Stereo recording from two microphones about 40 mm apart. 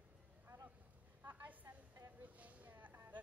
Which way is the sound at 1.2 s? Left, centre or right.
Right.